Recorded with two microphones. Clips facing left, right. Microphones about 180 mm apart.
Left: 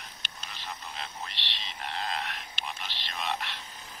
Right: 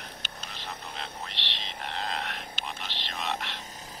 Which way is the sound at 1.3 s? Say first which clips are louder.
Right 3 dB; 65° right (ahead or behind).